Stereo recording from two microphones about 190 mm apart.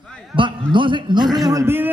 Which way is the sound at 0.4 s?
25° right (ahead or behind).